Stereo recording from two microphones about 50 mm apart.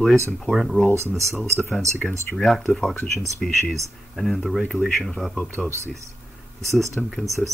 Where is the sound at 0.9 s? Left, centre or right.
Right.